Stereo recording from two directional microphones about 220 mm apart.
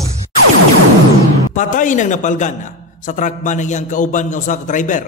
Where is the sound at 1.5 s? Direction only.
35° left (ahead or behind).